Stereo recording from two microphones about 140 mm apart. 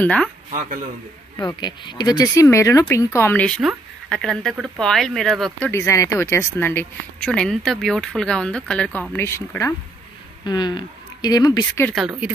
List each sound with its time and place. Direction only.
0.0 s speech: 10° left (ahead or behind)
0.5 s a man's voice: 70° right (ahead or behind)
1.4 s speech: 20° left (ahead or behind); by 5.7 s centre (ahead or behind)
5.7 s speech: 20° left (ahead or behind)
7.2 s speech: 5° left (ahead or behind)
10.4 s speech: 30° left (ahead or behind)
11.9 s speech: 5° right (ahead or behind)